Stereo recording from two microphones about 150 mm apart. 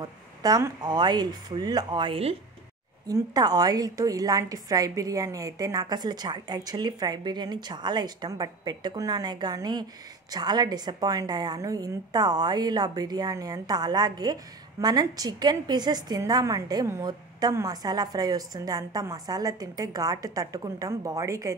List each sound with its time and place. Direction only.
0.0 s a woman's voice: 25° right (ahead or behind)
3.1 s a woman's voice: 25° right (ahead or behind)